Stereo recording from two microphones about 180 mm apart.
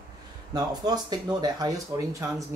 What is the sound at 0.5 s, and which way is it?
Speech, 20° right (ahead or behind).